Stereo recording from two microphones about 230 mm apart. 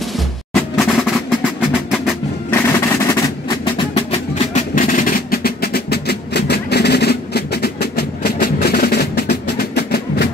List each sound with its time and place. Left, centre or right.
0.5 s music: centre; by 10.2 s left